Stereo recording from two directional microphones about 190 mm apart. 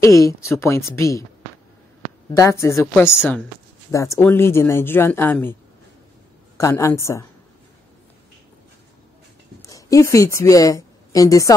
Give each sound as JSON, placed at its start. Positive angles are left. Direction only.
{"t": 0.0, "sound": "speech", "side_deg": 15}
{"t": 2.3, "sound": "speech", "side_deg": 15}
{"t": 6.6, "sound": "speech", "side_deg": 15}
{"t": 9.6, "sound": "a woman's voice", "side_deg": 15}